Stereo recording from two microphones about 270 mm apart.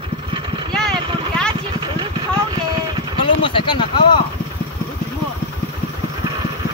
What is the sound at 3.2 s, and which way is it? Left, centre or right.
Speech, centre.